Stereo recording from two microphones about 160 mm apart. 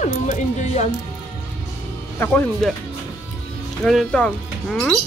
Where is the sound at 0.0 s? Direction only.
50° left (ahead or behind).